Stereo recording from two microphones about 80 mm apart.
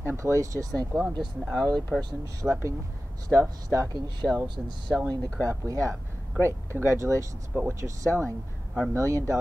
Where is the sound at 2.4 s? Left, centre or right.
Centre.